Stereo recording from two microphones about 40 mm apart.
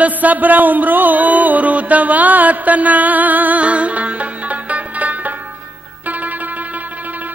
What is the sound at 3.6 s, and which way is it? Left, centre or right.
Music, right.